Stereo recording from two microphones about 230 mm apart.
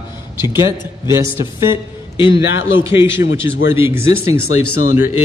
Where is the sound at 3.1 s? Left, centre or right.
Left.